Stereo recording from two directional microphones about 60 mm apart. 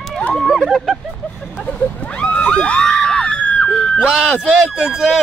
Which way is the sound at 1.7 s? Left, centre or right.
Centre.